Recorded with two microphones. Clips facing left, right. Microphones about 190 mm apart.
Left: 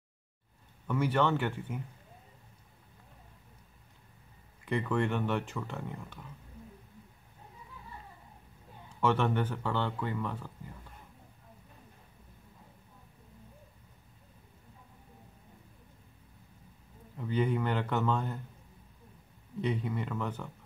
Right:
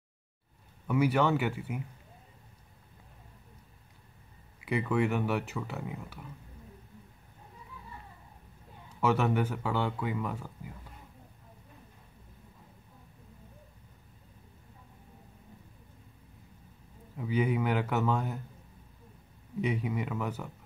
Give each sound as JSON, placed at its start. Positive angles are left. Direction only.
{"t": 0.8, "sound": "speech", "side_deg": -10}
{"t": 4.6, "sound": "speech", "side_deg": -10}
{"t": 9.0, "sound": "speech", "side_deg": -10}
{"t": 17.2, "sound": "speech", "side_deg": -10}
{"t": 19.6, "sound": "speech", "side_deg": -10}